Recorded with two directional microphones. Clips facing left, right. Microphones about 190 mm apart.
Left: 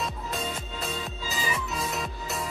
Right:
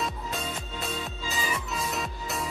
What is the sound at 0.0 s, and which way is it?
Music, centre (ahead or behind).